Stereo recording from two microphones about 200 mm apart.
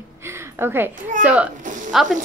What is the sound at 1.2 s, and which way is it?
Speech, 5° right (ahead or behind).